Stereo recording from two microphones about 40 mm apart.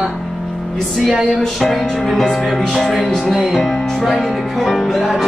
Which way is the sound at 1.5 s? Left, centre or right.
Centre.